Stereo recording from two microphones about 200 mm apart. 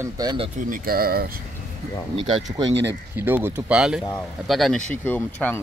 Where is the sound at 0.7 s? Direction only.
45° right (ahead or behind).